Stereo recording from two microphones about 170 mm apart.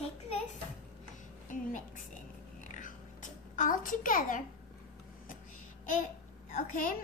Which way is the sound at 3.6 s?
55° left (ahead or behind).